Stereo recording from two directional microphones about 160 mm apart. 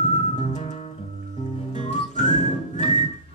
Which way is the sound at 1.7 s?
50° left (ahead or behind).